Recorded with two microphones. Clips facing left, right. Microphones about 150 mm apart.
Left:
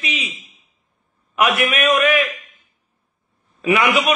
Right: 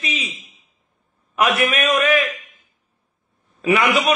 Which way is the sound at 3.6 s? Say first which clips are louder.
Even; 35° right (ahead or behind).